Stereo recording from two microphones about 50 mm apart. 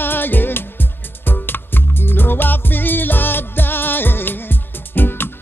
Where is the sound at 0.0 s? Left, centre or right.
Left.